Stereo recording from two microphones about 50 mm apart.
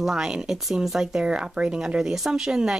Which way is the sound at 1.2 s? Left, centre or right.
Centre.